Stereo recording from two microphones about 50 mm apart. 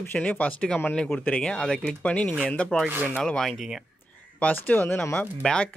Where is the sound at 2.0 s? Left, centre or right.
Left.